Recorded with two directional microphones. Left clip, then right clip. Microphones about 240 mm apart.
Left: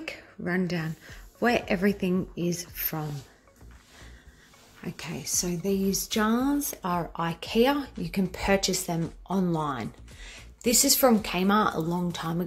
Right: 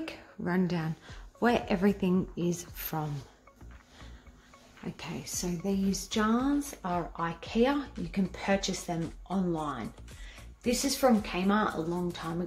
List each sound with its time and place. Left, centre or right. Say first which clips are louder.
0.0 s a sound: left 2 dB; centre
1.4 s speech: left 3 dB; centre
4.8 s speech: left 4 dB; centre